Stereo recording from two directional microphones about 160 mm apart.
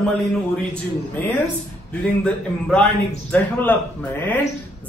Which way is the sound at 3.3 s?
10° left (ahead or behind).